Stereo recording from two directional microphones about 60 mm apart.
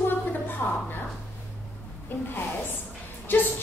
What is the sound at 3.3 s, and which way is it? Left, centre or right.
Speech, left.